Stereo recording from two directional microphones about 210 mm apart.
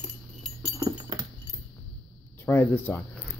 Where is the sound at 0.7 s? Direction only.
15° right (ahead or behind).